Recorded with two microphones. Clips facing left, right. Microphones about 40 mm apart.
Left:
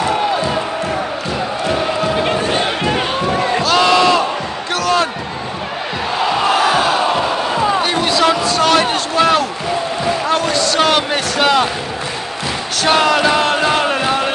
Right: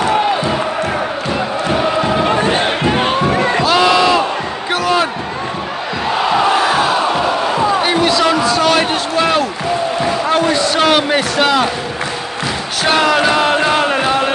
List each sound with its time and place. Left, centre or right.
2.5 s crowd: right
3.7 s crowd: centre
4.7 s a sound: centre
6.6 s crowd: centre
7.8 s basketball bounce: centre
8.1 s a sound: centre
10.2 s basketball bounce: centre
10.8 s speech: centre
12.8 s music: centre